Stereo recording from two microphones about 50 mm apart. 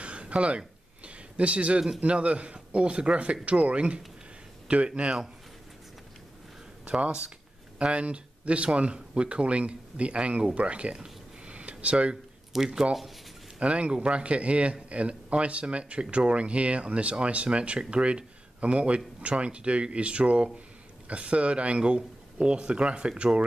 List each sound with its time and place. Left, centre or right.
0.0 s a sound: right
2.0 s a man's voice: right
6.8 s speech: right
12.5 s speech: centre
13.6 s a man's voice: right